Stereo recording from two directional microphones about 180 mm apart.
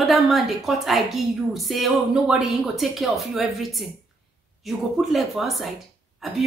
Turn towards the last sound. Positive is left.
turn(degrees=0)  # may be behind; listen again after turning